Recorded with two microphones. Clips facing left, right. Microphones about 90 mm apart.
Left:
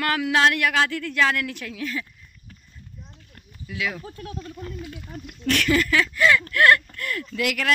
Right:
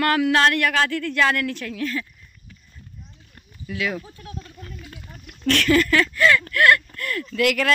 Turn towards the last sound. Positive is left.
turn(degrees=15)  # may be behind; listen again after turning